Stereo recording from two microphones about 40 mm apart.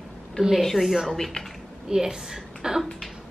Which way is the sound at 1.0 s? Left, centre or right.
Centre.